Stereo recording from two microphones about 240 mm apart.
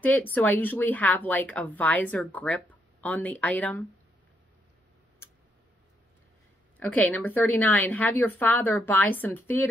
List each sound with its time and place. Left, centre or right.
0.0 s speech: centre
6.8 s speech: centre